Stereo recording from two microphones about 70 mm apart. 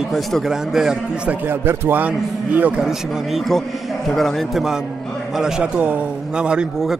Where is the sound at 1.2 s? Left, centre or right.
Right.